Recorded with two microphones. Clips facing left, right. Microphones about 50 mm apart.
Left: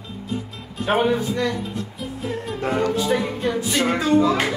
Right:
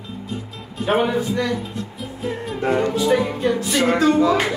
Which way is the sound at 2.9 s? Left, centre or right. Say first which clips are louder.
Right 3 dB; centre.